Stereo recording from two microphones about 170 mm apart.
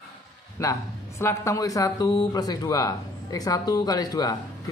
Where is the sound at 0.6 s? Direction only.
20° left (ahead or behind).